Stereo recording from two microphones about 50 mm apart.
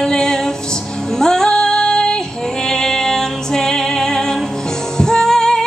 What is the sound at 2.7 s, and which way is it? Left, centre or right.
Music, centre.